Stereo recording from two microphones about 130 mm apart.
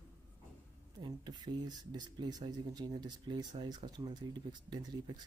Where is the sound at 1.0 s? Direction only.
35° right (ahead or behind).